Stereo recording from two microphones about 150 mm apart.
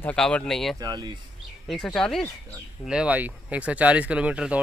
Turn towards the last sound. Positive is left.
turn(degrees=-10)  # may be behind; listen again after turning